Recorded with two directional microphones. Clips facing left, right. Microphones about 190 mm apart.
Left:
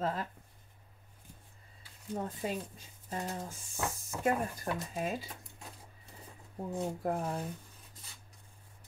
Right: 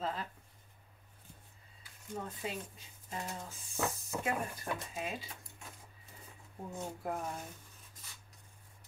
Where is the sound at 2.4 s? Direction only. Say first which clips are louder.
Left 4 dB; 40° left (ahead or behind).